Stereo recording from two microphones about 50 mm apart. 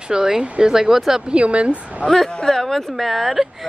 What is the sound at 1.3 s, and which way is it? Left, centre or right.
Speech, right.